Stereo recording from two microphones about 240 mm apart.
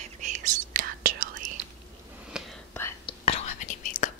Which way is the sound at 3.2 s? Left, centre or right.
Left.